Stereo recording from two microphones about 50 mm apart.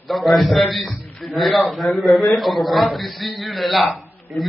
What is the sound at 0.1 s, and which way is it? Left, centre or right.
A man's voice, centre.